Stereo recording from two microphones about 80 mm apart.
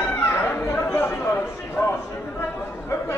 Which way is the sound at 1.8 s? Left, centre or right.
Left.